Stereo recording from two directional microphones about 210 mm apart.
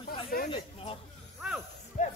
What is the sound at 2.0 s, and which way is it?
Music, 35° left (ahead or behind).